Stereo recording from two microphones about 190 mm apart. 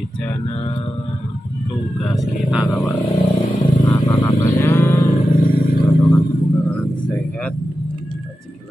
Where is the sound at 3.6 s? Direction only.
20° left (ahead or behind).